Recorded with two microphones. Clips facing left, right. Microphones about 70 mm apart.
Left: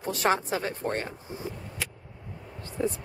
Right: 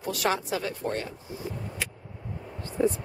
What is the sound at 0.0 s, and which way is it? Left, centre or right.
A woman's voice, left.